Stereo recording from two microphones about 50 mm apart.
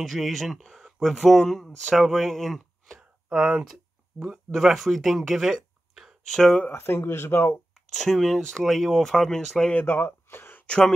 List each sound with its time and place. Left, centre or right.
0.0 s speech: centre
3.3 s speech: centre
4.5 s speech: centre
6.2 s speech: centre
6.7 s speech: left
7.9 s speech: centre
9.8 s speech: left